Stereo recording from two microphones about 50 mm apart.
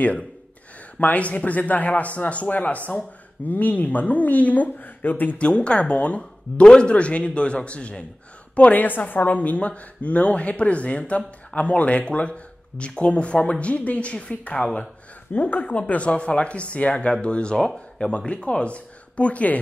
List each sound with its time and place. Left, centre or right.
0.9 s a woman's voice: left
5.4 s a woman's voice: left